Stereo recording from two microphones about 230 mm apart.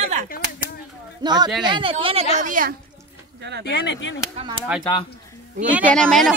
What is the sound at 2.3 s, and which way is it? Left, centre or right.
Speech, right.